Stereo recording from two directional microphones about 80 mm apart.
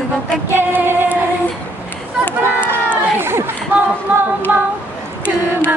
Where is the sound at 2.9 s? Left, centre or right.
Right.